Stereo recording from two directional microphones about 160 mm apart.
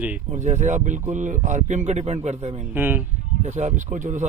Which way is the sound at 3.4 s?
50° right (ahead or behind).